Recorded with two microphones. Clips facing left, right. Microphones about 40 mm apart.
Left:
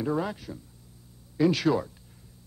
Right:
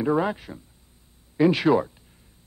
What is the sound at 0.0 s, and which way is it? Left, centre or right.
A man's voice, right.